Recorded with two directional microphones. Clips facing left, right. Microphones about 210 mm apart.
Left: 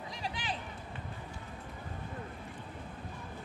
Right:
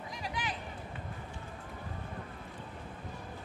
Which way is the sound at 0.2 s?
30° left (ahead or behind).